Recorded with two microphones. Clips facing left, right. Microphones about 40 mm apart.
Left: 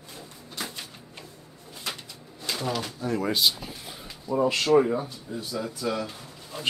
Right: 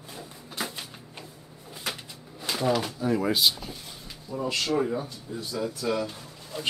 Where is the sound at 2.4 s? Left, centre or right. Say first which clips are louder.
Right 4 dB; centre.